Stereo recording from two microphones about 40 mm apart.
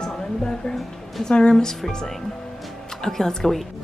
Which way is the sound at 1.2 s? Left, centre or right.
Left.